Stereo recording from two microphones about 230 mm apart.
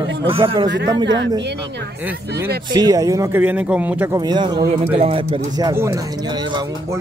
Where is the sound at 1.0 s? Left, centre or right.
Right.